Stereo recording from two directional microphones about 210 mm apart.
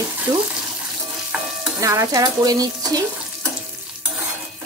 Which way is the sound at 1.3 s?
5° right (ahead or behind).